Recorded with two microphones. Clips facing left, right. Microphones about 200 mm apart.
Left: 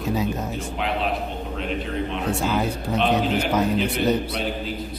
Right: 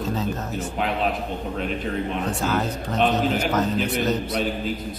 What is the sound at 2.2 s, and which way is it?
Speech, 10° left (ahead or behind).